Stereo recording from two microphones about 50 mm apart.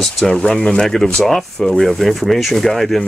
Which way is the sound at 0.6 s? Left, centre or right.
Left.